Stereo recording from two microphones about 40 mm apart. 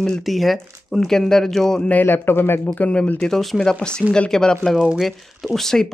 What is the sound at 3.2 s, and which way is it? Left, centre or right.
Speech, centre.